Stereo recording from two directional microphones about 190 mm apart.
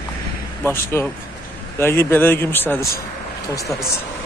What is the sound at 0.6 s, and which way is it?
Speech, 10° left (ahead or behind).